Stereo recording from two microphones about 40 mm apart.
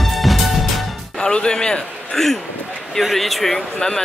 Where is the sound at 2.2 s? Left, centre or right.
Centre.